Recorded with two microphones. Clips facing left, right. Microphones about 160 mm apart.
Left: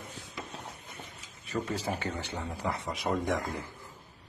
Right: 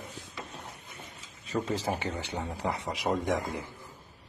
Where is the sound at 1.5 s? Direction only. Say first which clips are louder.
Right 2 dB; 15° right (ahead or behind).